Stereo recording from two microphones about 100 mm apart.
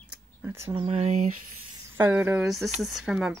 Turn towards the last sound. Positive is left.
turn(degrees=-5)  # may be behind; listen again after turning